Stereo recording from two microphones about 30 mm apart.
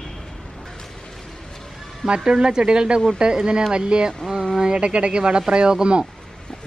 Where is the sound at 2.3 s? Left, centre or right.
Right.